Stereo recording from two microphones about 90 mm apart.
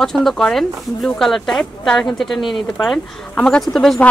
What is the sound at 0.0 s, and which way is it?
Speech, 5° left (ahead or behind).